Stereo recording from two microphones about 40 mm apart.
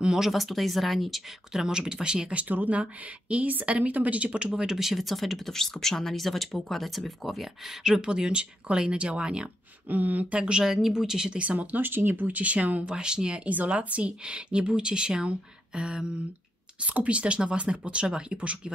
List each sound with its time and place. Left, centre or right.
0.2 s speech: centre
1.5 s speech: centre
2.3 s speech: right
4.6 s speech: centre
7.8 s a woman's voice: centre
9.8 s speech: right
10.3 s a woman's voice: right
10.6 s speech: centre
11.4 s speech: right
11.9 s speech: right
12.3 s speech: right
12.8 s a woman's voice: right
13.5 s a woman's voice: right